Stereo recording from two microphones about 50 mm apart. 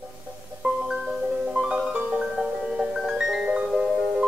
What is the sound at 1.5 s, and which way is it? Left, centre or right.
Music, centre.